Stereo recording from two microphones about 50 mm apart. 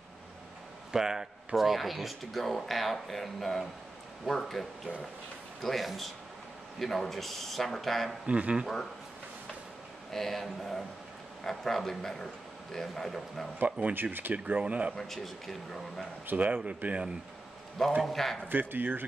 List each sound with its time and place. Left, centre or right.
0.9 s speech: centre
8.3 s speech: right
10.1 s speech: centre
13.6 s speech: right
15.0 s speech: centre
16.3 s speech: right
18.0 s speech: centre
18.5 s speech: right